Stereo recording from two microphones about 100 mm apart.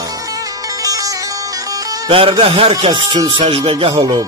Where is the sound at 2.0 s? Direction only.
60° right (ahead or behind).